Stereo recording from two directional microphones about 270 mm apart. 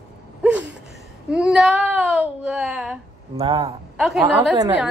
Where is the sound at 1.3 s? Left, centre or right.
Centre.